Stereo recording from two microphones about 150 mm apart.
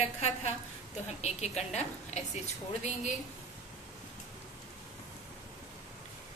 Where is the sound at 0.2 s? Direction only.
45° left (ahead or behind).